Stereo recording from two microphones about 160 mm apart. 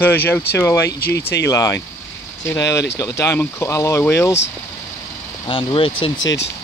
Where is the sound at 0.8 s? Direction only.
85° left.